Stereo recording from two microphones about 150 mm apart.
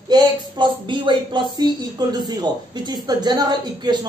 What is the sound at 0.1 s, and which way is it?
Speech, 30° right (ahead or behind).